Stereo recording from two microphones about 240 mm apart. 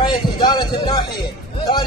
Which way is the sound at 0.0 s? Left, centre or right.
Centre.